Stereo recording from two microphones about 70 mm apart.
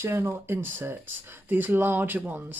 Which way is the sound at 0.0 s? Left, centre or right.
Right.